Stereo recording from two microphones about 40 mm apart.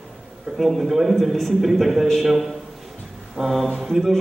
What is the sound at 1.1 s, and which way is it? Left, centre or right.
Speech, centre.